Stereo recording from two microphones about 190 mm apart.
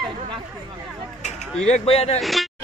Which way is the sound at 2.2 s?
Centre (ahead or behind).